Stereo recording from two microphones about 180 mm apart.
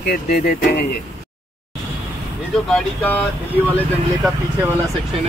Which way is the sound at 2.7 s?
10° left (ahead or behind).